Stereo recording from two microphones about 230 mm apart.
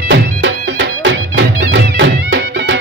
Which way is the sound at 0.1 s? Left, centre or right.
Right.